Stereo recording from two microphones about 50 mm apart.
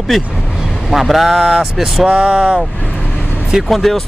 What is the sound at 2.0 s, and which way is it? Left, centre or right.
Speech, centre.